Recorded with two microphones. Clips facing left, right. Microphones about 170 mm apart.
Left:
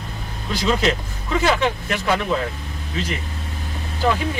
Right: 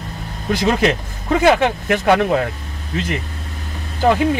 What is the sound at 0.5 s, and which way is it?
Speech, 55° right (ahead or behind).